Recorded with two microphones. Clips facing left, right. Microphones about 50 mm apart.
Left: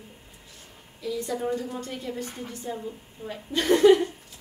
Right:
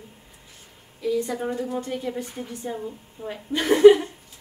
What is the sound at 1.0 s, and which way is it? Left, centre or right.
A woman's voice, right.